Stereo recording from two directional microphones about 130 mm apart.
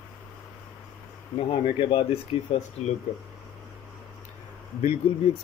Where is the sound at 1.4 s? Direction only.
40° left (ahead or behind).